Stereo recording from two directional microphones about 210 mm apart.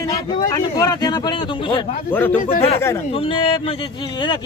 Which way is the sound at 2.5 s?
30° left (ahead or behind).